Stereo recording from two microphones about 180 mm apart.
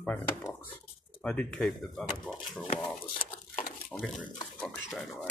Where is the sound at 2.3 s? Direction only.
25° left (ahead or behind).